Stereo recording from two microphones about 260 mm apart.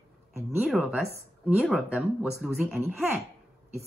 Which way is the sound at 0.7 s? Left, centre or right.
Centre.